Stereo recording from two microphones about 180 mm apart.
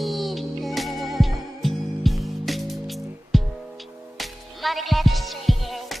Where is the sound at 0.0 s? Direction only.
Centre (ahead or behind).